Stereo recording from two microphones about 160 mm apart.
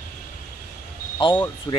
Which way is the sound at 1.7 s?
20° left (ahead or behind).